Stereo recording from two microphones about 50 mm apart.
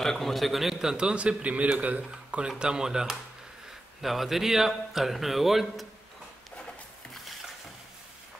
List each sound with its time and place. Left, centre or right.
0.0 s a man's voice: centre; by 2.0 s right
2.3 s a man's voice: centre